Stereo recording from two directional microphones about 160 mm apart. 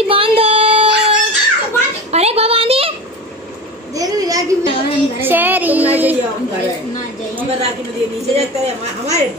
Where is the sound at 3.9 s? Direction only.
20° right (ahead or behind).